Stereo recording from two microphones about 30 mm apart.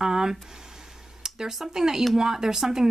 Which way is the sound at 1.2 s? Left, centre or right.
Centre.